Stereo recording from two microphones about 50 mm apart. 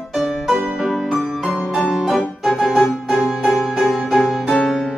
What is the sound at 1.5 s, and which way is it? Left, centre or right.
Music, centre.